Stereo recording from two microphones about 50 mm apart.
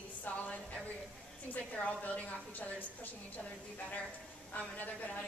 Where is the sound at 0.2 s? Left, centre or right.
Left.